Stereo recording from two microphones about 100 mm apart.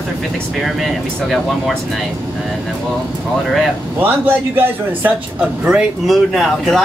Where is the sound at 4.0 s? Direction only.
20° right (ahead or behind).